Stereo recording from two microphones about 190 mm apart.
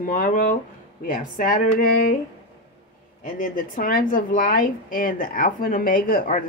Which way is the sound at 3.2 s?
45° left (ahead or behind).